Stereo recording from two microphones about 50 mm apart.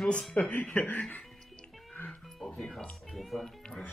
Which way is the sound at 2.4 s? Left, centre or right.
Centre.